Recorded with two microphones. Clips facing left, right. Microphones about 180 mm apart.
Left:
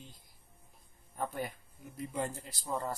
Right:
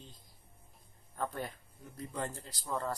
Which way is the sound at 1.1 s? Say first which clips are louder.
Left 1 dB; 10° left (ahead or behind).